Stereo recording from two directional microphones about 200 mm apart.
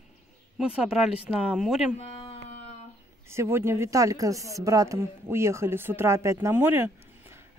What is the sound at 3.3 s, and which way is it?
Speech, 15° right (ahead or behind).